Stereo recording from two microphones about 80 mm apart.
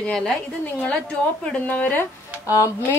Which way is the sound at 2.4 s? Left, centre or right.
Left.